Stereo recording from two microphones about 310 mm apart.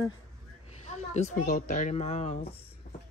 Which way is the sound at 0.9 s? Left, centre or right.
Left.